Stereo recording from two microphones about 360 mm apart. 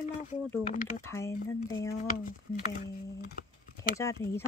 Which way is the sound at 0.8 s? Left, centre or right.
Left.